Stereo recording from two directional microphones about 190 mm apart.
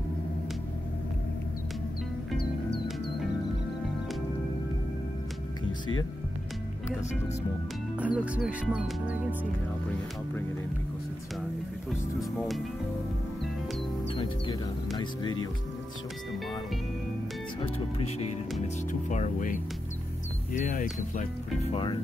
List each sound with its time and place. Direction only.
8.0 s speech: 5° right (ahead or behind)
18.9 s speech: 40° left (ahead or behind)